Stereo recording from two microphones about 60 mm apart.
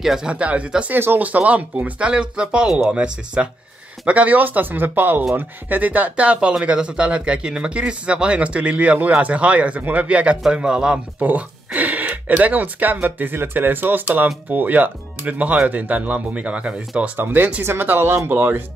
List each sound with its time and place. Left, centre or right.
0.0 s speech: centre
0.3 s speech: right
0.9 s speech: right
5.8 s speech: right
11.2 s speech: right
17.2 s speech: right